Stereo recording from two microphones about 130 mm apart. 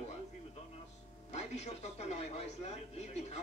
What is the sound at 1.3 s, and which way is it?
Speech, 60° left (ahead or behind).